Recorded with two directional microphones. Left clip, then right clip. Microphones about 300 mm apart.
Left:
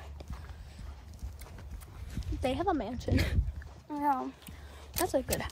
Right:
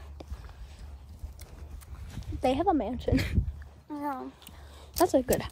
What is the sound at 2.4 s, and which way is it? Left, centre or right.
Speech, centre.